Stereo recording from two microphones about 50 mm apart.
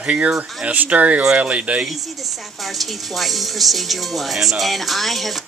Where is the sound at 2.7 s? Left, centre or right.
Centre.